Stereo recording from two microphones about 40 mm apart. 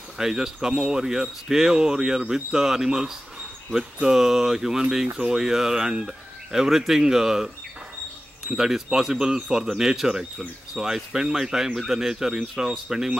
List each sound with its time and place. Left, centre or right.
0.2 s speech: centre
5.0 s speech: right
5.3 s speech: centre